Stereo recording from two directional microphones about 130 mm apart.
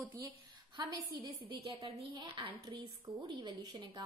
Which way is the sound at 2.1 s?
40° right (ahead or behind).